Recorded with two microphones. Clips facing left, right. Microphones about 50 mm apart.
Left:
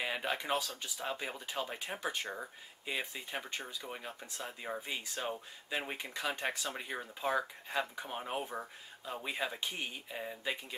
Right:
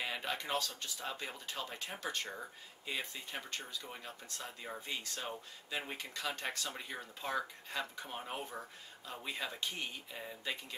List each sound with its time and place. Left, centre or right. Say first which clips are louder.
0.0 s speech: left 3 dB; centre